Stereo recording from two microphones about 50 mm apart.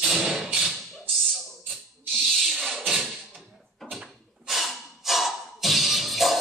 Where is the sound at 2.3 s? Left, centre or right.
Centre.